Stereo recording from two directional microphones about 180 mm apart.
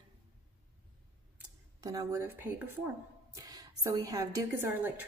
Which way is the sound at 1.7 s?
20° right (ahead or behind).